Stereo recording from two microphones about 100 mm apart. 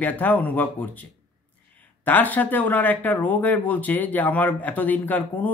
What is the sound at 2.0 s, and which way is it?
Speech, 15° left (ahead or behind).